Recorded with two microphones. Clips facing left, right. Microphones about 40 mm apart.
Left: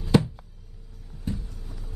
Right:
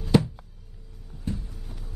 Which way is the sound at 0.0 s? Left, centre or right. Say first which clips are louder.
Even; centre.